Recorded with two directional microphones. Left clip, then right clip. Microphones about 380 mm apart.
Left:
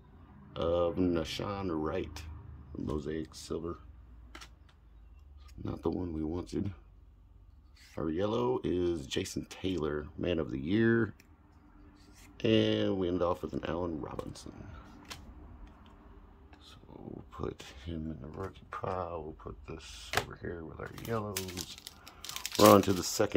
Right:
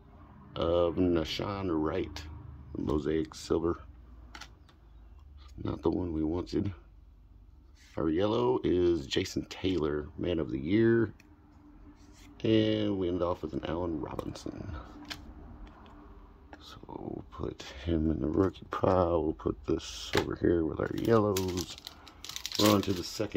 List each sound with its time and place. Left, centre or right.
0.5 s speech: centre
5.6 s speech: centre
7.9 s speech: centre
12.4 s speech: centre
16.4 s whispering: centre
17.3 s speech: centre
21.6 s crumpling: centre
22.6 s speech: centre